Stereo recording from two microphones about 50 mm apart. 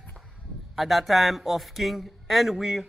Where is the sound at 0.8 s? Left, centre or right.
Centre.